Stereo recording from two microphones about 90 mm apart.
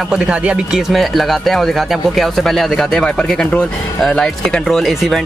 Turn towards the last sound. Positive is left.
turn(degrees=0)  # may be behind; listen again after turning